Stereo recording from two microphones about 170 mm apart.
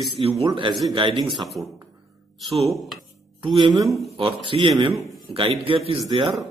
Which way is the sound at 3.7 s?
Centre (ahead or behind).